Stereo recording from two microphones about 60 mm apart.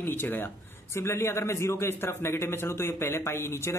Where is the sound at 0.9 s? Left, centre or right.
Left.